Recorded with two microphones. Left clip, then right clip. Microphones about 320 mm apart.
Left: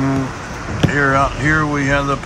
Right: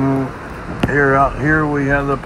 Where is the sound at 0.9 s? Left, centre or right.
Centre.